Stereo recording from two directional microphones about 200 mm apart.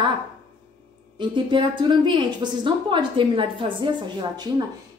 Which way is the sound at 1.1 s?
25° right (ahead or behind).